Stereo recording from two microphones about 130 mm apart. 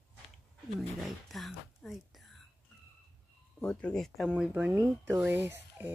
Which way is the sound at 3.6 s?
10° left (ahead or behind).